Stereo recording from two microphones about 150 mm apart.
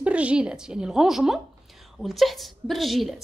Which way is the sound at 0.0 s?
10° right (ahead or behind).